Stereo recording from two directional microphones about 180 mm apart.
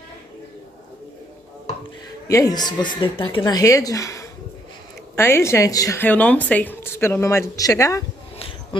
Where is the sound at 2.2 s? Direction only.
20° left (ahead or behind).